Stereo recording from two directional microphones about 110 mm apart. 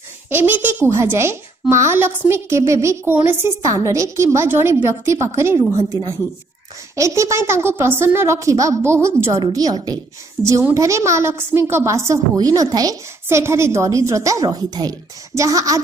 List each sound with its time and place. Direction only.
0.3 s a woman's voice: 20° right (ahead or behind)